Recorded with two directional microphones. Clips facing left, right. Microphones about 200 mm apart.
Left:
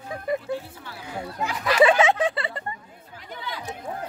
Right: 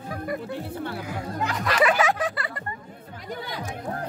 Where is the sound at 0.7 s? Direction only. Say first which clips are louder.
Right 11 dB; 60° right (ahead or behind).